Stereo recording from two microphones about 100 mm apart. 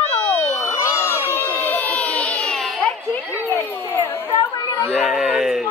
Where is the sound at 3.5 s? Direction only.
30° left (ahead or behind).